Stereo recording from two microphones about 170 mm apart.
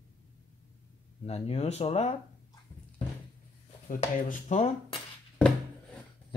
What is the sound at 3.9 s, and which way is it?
Speech, 50° left (ahead or behind).